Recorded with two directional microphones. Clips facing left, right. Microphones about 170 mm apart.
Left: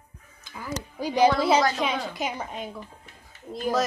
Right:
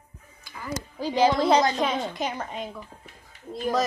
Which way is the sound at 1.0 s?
15° left (ahead or behind).